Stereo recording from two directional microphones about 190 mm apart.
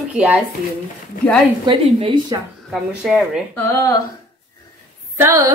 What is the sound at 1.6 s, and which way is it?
Speech, 25° right (ahead or behind).